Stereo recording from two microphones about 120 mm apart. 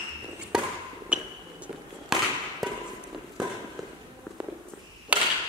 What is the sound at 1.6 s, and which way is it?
Fireworks, 5° right (ahead or behind).